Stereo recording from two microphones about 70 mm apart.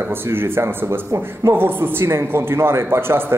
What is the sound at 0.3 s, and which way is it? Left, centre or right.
Speech, right.